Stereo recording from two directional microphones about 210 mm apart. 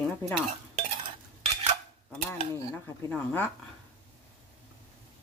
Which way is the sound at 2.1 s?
10° left (ahead or behind).